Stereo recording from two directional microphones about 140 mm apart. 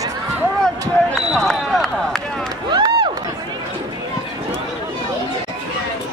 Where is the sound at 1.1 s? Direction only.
5° left (ahead or behind).